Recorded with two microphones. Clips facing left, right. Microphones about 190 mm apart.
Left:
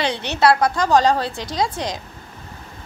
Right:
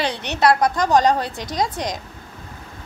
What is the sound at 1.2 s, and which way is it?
Speech, 45° right (ahead or behind).